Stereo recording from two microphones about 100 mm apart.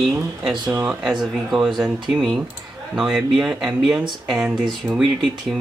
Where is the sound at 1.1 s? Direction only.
5° right (ahead or behind).